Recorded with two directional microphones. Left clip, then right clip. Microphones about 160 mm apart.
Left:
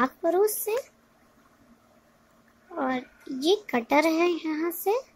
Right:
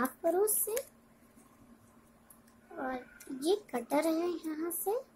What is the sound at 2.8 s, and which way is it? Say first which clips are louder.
Speech: left 10 dB; 20° left (ahead or behind).